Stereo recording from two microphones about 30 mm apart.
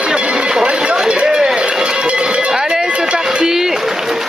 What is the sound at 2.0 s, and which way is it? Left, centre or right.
Cowbell, right.